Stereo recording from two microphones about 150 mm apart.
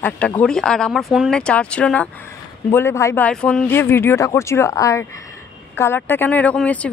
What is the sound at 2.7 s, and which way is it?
A man's voice, 20° left (ahead or behind).